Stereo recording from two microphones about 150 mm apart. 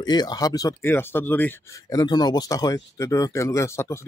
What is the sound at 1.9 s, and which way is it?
Speech, 25° left (ahead or behind).